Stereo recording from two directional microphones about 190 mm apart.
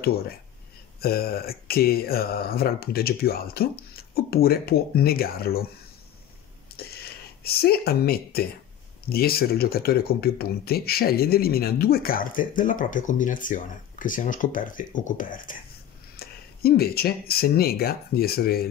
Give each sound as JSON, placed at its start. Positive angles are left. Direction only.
{"t": 1.0, "sound": "speech", "side_deg": 55}
{"t": 6.7, "sound": "a sound", "side_deg": 55}
{"t": 7.4, "sound": "speech", "side_deg": 55}